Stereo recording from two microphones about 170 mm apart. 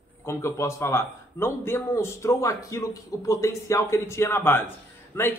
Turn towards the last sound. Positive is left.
turn(degrees=15)  # may be behind; listen again after turning